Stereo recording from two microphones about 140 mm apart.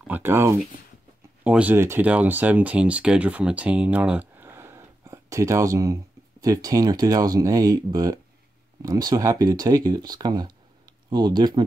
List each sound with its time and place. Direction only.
0.0 s speech: 15° right (ahead or behind); by 11.6 s 30° right (ahead or behind)